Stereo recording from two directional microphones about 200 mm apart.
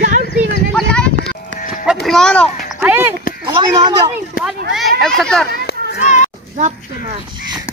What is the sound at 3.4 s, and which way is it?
Speech, 20° right (ahead or behind).